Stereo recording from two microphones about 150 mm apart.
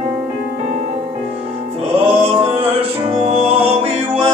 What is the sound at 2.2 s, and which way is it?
Music, 40° right (ahead or behind).